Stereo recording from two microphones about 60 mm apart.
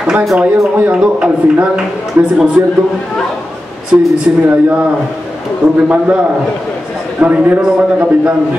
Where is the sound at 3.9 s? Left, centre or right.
Right.